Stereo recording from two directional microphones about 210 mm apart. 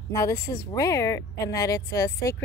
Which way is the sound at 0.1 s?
15° left (ahead or behind).